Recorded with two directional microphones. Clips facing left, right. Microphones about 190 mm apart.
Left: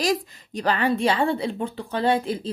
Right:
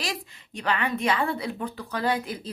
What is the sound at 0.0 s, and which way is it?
A woman's voice, 40° left (ahead or behind).